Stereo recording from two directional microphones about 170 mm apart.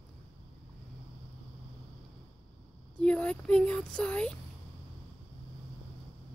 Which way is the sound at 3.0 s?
5° left (ahead or behind).